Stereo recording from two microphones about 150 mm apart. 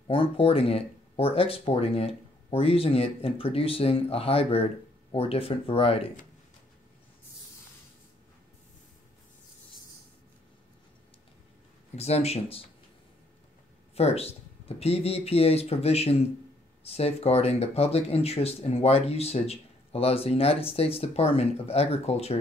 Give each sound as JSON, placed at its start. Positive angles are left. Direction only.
{"t": 0.1, "sound": "speech", "side_deg": 40}
{"t": 11.9, "sound": "speech", "side_deg": 45}
{"t": 13.9, "sound": "speech", "side_deg": 45}